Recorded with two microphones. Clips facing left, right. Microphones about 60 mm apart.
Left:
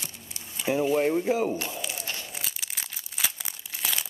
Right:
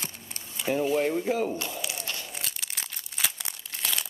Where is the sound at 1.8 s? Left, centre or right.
Centre.